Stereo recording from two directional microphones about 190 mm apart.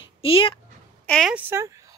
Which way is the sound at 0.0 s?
30° left (ahead or behind).